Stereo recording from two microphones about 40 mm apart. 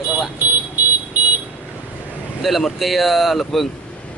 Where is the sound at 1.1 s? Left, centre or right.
Right.